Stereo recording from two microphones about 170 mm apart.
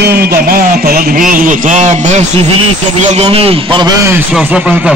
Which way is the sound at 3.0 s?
40° right (ahead or behind).